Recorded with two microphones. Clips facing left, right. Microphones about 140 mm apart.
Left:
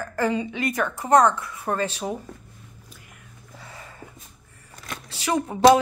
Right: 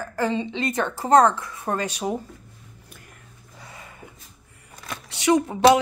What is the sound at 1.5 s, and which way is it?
Speech, 15° right (ahead or behind).